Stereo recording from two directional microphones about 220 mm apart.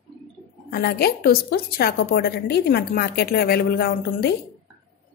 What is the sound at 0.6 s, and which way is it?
A woman's voice, 45° left (ahead or behind).